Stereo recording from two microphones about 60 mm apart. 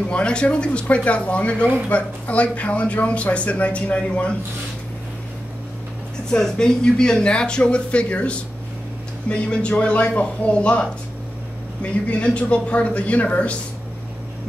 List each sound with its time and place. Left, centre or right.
0.1 s speech: centre
6.3 s speech: centre